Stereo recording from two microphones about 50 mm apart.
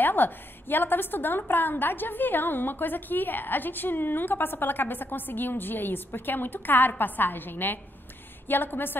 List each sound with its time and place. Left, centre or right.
0.0 s a woman's voice: left